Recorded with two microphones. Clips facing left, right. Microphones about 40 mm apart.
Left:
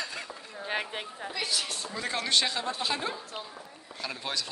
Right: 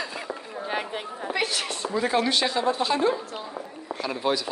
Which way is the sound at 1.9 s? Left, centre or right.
Centre.